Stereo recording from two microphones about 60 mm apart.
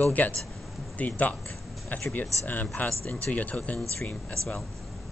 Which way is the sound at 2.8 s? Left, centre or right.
Left.